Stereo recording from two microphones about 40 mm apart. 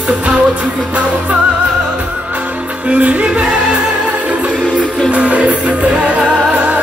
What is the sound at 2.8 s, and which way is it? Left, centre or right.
Music, right.